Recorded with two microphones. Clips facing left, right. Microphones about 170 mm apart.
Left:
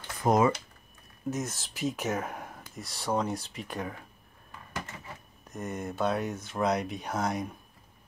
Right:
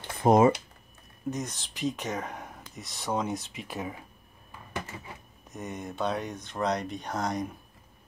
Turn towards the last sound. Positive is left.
turn(degrees=5)  # may be behind; listen again after turning